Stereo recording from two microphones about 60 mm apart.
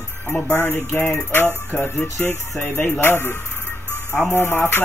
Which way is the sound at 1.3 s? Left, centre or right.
Left.